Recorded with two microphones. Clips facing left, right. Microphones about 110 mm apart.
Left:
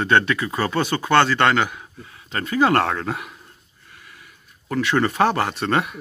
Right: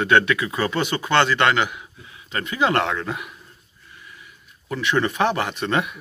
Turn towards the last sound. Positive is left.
turn(degrees=45)  # may be behind; listen again after turning